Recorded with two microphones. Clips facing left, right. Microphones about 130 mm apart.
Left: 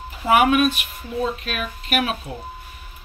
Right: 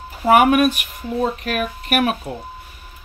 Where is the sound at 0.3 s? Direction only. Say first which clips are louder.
Right 3 dB; 50° right (ahead or behind).